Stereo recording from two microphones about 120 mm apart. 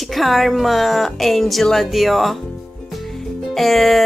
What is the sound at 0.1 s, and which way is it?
Speech, centre (ahead or behind).